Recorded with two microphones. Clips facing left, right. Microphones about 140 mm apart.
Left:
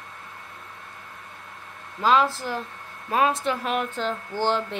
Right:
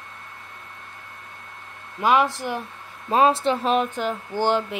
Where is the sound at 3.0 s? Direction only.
30° right (ahead or behind).